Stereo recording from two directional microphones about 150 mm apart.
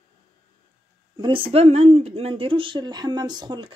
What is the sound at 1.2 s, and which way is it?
Speech, 35° right (ahead or behind).